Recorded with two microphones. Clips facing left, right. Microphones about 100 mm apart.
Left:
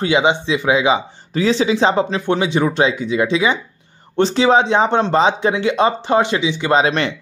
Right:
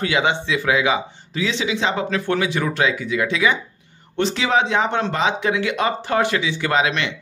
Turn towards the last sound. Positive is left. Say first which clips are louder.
# left 5 dB
turn(degrees=35)  # may be behind; listen again after turning